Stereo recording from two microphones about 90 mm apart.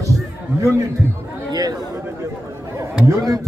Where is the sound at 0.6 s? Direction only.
35° right (ahead or behind).